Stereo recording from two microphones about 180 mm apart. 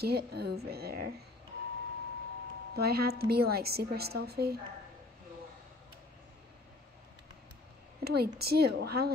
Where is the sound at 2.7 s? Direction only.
60° right (ahead or behind).